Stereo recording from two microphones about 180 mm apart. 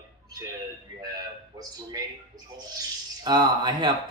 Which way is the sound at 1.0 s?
20° right (ahead or behind).